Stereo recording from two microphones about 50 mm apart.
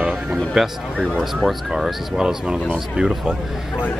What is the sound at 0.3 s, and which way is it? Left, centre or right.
Speech, centre.